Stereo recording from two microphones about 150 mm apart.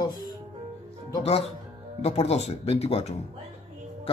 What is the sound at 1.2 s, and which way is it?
Speech, 40° left (ahead or behind).